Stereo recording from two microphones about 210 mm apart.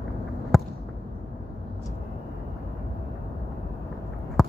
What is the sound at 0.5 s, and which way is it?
Basketball bounce, centre (ahead or behind).